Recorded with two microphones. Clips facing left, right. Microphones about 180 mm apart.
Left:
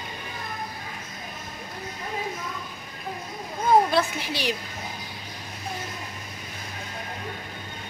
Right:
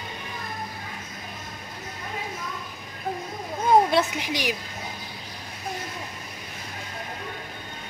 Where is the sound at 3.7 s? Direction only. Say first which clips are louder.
Right 1 dB; 20° right (ahead or behind).